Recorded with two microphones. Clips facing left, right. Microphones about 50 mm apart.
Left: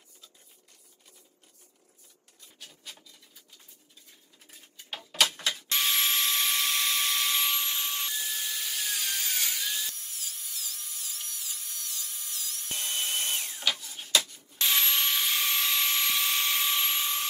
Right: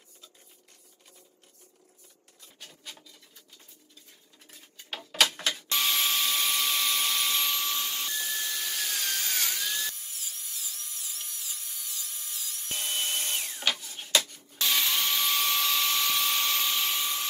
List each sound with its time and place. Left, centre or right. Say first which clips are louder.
4.5 s a sound: right 1 dB; centre
5.8 s dental drill: even; centre
7.9 s wood: right 1 dB; centre
9.8 s tools: right 2 dB; centre
13.7 s rub: even; centre
14.6 s dental drill: even; centre
16.9 s a sound: even; left